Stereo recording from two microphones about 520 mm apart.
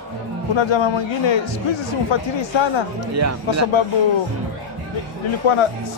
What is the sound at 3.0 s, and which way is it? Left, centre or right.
Speech, right.